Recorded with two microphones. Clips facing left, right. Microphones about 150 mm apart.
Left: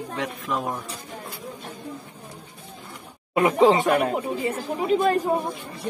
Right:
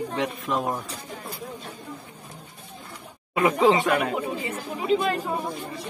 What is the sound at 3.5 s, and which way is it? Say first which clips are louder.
Speech: left 2 dB; 40° left (ahead or behind).